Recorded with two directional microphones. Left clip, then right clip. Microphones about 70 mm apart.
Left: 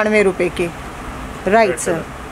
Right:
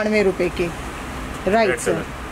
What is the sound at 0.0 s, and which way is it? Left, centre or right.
Speech, left.